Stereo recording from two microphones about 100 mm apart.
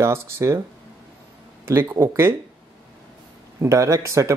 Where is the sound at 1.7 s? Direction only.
25° right (ahead or behind).